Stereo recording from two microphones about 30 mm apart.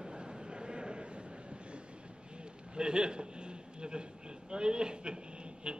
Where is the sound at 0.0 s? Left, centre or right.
Right.